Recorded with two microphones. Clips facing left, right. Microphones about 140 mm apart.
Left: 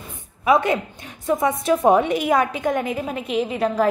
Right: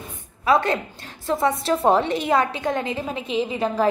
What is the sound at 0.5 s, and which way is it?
A woman's voice, 20° left (ahead or behind).